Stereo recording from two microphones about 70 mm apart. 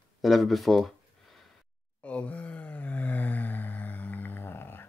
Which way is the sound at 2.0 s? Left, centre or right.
Left.